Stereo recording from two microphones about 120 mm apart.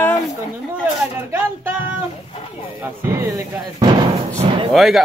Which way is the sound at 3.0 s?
25° right (ahead or behind).